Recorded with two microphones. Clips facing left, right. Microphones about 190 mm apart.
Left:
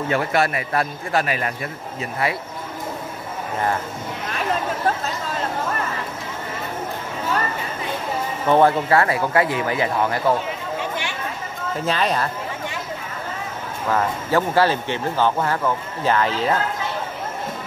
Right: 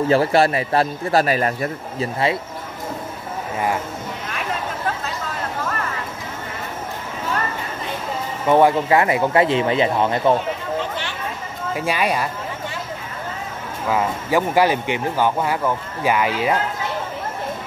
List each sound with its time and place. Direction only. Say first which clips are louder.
0.1 s a man's voice: right 4 dB; 30° right (ahead or behind)
8.5 s speech: right 1 dB; 15° right (ahead or behind)
10.8 s a sound: right 1 dB; 15° left (ahead or behind)
11.7 s speech: right 1 dB; 10° right (ahead or behind)
13.8 s speech: right 1 dB; 10° right (ahead or behind)